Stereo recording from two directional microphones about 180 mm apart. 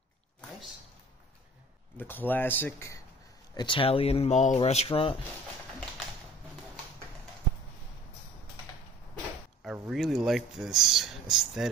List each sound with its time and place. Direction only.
2.0 s speech: 10° left (ahead or behind)
3.5 s speech: 30° left (ahead or behind)
9.6 s speech: centre (ahead or behind)